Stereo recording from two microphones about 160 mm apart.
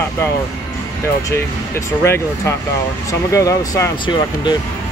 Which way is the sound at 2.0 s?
15° left (ahead or behind).